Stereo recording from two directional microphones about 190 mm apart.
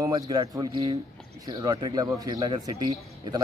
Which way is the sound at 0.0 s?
20° right (ahead or behind).